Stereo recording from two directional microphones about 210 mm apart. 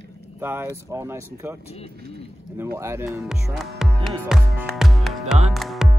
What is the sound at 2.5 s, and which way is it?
Speech, 10° right (ahead or behind).